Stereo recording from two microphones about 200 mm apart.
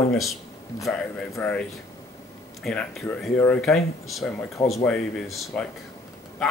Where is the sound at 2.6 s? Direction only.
5° left (ahead or behind).